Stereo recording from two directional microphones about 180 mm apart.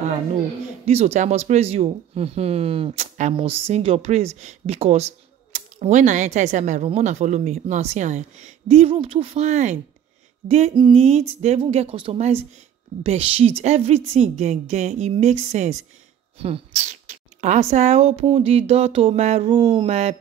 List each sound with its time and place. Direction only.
0.8 s speech: 35° right (ahead or behind)